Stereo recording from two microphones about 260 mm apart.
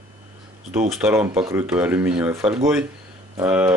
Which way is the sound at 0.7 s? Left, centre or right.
Centre.